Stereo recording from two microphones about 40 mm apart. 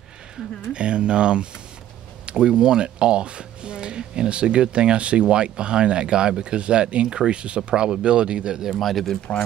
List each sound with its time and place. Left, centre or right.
0.7 s speech: right
8.6 s speech: centre